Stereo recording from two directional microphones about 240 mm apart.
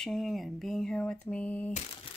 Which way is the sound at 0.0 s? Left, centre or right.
Centre.